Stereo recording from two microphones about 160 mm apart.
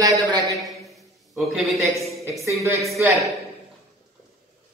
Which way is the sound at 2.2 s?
20° right (ahead or behind).